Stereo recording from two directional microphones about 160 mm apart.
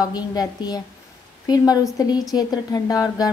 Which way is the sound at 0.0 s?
25° left (ahead or behind).